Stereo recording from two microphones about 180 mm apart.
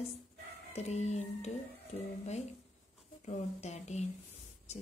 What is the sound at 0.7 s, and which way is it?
Speech, 40° left (ahead or behind).